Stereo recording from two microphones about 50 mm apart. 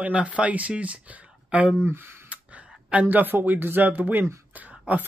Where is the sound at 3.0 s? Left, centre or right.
Right.